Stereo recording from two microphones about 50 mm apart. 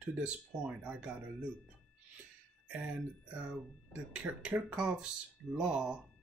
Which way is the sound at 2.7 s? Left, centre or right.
Right.